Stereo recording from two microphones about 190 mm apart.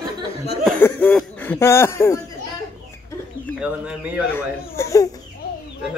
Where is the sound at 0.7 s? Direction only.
10° left (ahead or behind).